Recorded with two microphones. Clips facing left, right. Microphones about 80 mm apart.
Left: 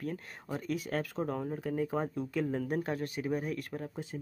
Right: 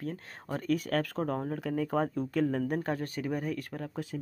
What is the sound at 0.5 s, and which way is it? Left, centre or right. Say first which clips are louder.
Speech: right 5 dB; right.